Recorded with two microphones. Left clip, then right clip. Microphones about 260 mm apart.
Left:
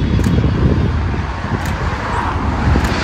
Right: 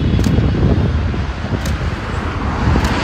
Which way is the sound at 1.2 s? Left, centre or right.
Left.